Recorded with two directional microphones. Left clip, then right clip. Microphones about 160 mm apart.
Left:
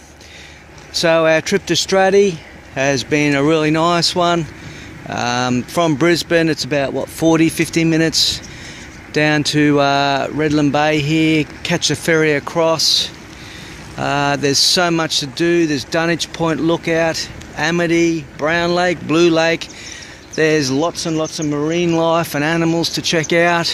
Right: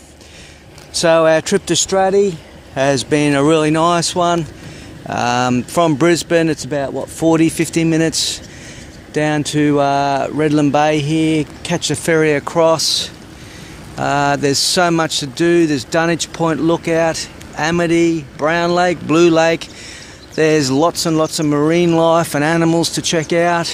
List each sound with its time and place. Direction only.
0.9 s speech: 5° right (ahead or behind)
1.9 s speech: 15° left (ahead or behind)
2.7 s speech: 5° right (ahead or behind)
5.1 s speech: 10° right (ahead or behind)
6.7 s speech: 20° left (ahead or behind)
7.2 s speech: centre (ahead or behind)
23.1 s speech: centre (ahead or behind)